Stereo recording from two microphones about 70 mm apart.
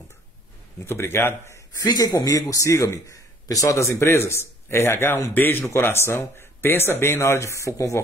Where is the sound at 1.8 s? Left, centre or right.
Left.